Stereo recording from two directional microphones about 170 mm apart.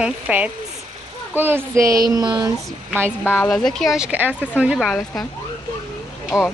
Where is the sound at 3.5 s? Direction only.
Centre (ahead or behind).